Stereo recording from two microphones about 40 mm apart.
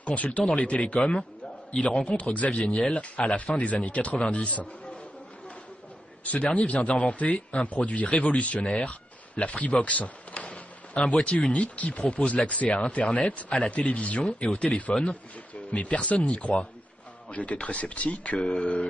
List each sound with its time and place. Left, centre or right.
0.0 s speech: left
1.7 s a man's voice: left
6.2 s speech: left
10.5 s a sound: left
11.5 s a man's voice: left